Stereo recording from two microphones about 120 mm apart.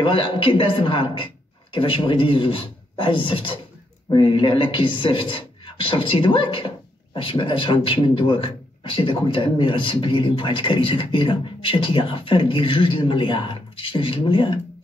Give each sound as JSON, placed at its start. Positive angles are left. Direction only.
{"t": 0.0, "sound": "a man's voice", "side_deg": 45}